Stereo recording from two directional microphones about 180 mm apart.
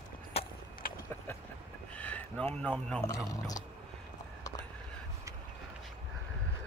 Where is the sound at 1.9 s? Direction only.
10° left (ahead or behind).